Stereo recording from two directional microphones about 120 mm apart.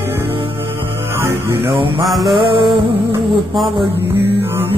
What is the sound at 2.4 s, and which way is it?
Music, 45° right (ahead or behind).